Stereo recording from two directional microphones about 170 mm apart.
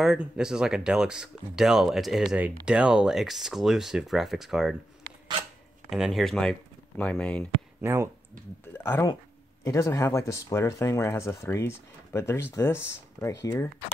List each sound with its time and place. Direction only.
0.0 s speech: 5° right (ahead or behind)
5.9 s speech: centre (ahead or behind)
7.8 s speech: 15° right (ahead or behind)
8.7 s speech: 10° left (ahead or behind)